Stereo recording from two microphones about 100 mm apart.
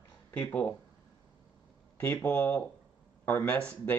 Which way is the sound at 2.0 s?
15° left (ahead or behind).